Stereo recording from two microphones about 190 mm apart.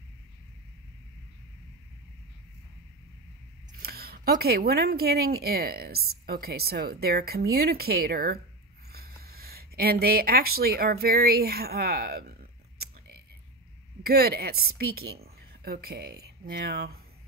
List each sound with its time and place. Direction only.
3.8 s speech: 55° right (ahead or behind)
14.0 s a woman's voice: 55° right (ahead or behind)